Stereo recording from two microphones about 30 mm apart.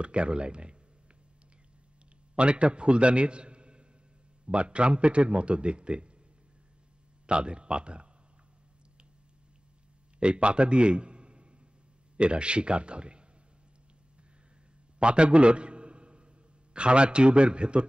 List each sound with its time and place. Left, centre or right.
0.0 s a man's voice: right
2.3 s a man's voice: right
7.2 s a man's voice: right
10.1 s a man's voice: right
15.0 s a sound: right
16.7 s a man's voice: right